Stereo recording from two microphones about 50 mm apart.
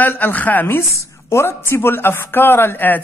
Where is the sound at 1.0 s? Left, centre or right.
Left.